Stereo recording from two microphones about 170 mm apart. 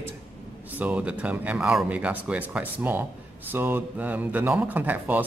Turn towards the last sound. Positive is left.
turn(degrees=-10)  # may be behind; listen again after turning